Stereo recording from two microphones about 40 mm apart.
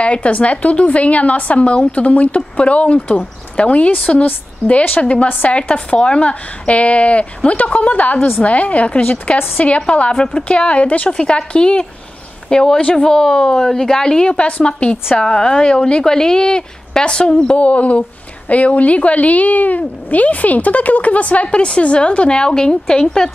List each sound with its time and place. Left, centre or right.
0.0 s a woman's voice: left
11.1 s a woman's voice: left
17.6 s a woman's voice: left; by 23.3 s centre